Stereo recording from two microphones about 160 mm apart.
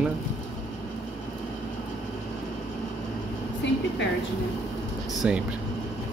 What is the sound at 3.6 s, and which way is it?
Air conditioning, 90° left.